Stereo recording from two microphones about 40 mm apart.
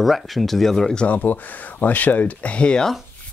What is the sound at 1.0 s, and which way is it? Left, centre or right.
Speech, left.